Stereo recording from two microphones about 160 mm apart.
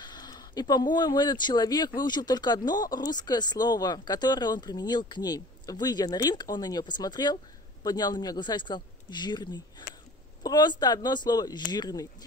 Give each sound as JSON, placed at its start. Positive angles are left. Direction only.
{"t": 0.0, "sound": "speech", "side_deg": 25}